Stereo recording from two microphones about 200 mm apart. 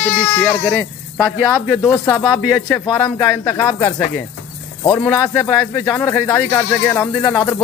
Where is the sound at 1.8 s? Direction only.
20° left (ahead or behind).